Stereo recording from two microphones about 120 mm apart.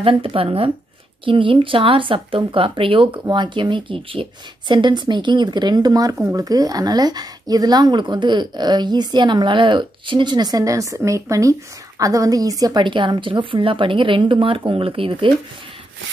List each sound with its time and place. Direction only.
0.0 s a woman's voice: 50° right (ahead or behind)